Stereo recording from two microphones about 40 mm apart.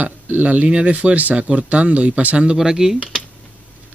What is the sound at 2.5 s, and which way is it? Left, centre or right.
Speech, centre.